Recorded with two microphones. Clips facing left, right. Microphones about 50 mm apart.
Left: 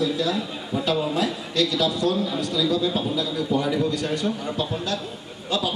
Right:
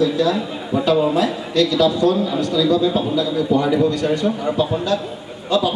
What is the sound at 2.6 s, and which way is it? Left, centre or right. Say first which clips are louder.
A man's voice: right 5 dB; centre.